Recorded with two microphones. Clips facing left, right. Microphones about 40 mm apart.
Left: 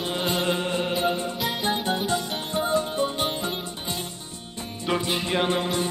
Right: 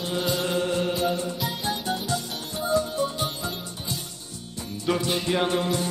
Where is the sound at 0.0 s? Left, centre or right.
Left.